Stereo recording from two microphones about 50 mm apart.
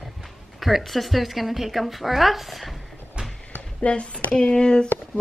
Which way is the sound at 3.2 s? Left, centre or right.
Centre.